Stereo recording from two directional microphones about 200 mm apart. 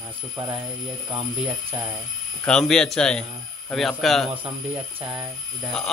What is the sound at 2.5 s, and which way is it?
A man's voice, 5° left (ahead or behind).